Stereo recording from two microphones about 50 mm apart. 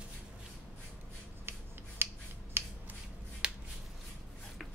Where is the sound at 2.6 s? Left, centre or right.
Right.